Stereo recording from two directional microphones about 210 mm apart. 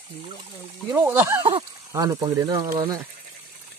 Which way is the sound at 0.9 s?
10° right (ahead or behind).